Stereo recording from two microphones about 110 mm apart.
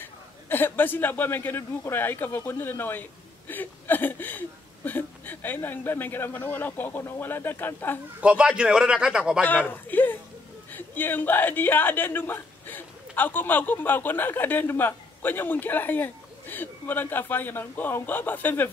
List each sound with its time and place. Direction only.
0.0 s a man's voice: 20° left (ahead or behind)
8.2 s a man's voice: 10° right (ahead or behind)
9.4 s a man's voice: 15° left (ahead or behind)